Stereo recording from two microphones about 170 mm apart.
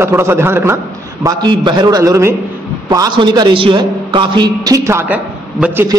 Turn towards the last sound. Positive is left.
turn(degrees=-10)  # may be behind; listen again after turning